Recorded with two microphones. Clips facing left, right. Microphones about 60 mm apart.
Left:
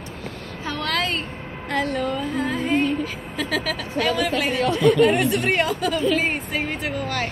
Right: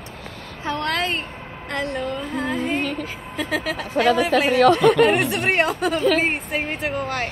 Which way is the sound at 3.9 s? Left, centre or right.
Right.